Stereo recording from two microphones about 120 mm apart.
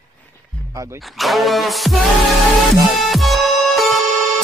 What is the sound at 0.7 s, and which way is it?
Speech, 30° right (ahead or behind).